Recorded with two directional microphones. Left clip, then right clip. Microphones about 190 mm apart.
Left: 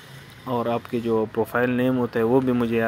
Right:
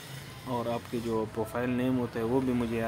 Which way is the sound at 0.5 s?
30° left (ahead or behind).